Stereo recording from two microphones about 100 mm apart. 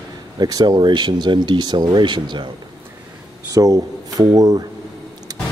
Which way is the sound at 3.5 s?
40° right (ahead or behind).